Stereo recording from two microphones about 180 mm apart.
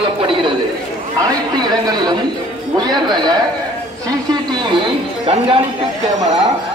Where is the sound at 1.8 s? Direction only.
25° right (ahead or behind).